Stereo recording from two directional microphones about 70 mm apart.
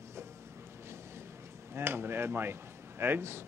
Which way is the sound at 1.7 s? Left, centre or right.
Right.